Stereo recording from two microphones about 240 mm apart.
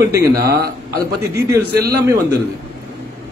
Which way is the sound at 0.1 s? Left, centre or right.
Centre.